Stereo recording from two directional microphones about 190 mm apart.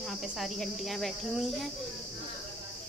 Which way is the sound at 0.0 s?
Centre (ahead or behind).